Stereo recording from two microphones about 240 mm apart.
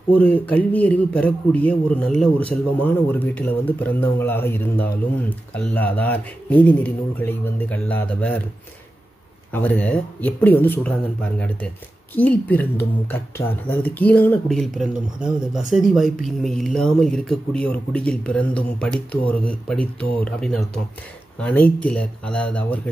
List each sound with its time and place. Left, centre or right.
0.1 s speech: centre
9.5 s speech: centre
13.7 s speech: centre